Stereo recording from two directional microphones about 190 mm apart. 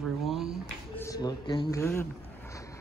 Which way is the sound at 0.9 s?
15° left (ahead or behind).